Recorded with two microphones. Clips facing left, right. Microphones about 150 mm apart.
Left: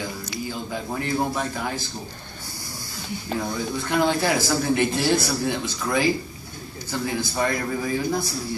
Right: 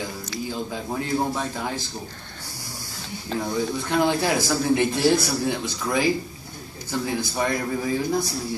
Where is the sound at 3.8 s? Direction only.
15° right (ahead or behind).